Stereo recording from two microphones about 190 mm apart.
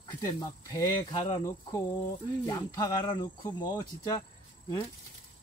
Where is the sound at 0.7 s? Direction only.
20° left (ahead or behind).